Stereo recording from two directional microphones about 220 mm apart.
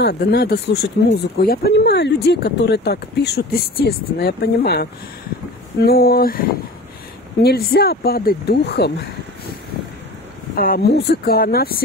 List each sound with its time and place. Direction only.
0.0 s speech: 45° left (ahead or behind)
5.9 s speech: 45° left (ahead or behind)
7.4 s speech: 45° left (ahead or behind)
10.5 s speech: 40° left (ahead or behind)